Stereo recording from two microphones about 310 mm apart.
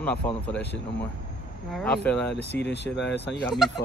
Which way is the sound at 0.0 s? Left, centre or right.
Centre.